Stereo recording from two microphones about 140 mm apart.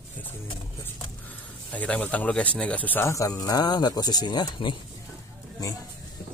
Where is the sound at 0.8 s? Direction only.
10° left (ahead or behind); by 4.8 s 30° left (ahead or behind).